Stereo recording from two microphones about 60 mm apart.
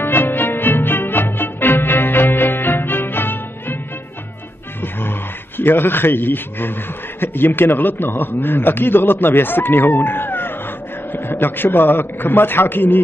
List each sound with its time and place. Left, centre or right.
0.0 s music: left
5.6 s a man's voice: left